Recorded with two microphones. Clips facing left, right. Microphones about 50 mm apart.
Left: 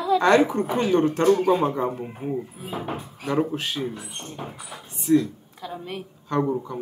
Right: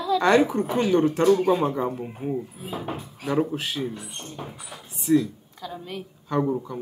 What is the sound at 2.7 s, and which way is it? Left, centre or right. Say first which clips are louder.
Speech: left 1 dB; centre.